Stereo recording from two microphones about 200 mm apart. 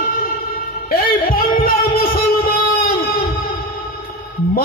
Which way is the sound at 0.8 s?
45° left (ahead or behind).